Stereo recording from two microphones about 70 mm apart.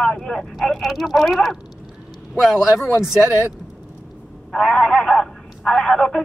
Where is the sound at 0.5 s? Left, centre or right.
Centre.